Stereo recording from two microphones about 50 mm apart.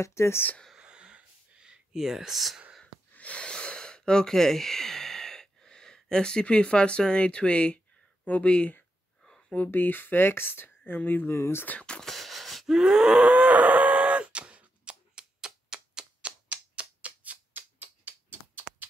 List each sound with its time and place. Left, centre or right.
0.0 s speech: left
0.7 s a sound: centre
3.1 s gasp: left
8.3 s speech: left
9.7 s speech: left
11.2 s speech: left
11.8 s speech: centre
12.1 s wheeze: centre
13.3 s a sound: right